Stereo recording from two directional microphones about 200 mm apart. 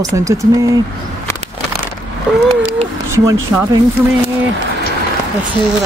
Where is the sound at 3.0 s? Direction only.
15° right (ahead or behind).